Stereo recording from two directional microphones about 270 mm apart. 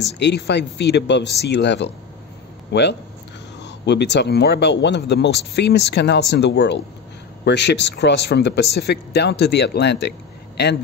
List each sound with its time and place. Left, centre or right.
0.2 s speech: left